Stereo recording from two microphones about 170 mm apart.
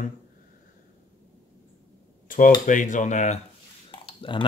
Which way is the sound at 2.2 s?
50° left (ahead or behind).